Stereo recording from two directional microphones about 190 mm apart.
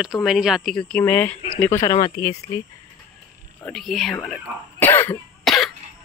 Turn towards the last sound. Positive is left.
turn(degrees=0)  # may be behind; listen again after turning